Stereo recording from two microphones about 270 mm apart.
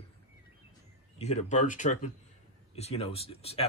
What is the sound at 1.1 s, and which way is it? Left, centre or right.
Speech, left.